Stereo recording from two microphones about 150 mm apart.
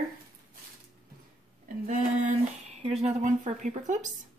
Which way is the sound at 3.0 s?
55° right (ahead or behind).